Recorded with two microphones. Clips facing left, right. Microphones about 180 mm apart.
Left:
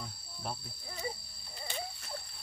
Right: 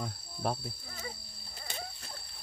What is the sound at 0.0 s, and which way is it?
Cricket, 70° right (ahead or behind).